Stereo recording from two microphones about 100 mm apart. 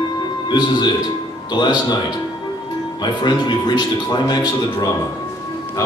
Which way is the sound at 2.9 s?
45° left (ahead or behind).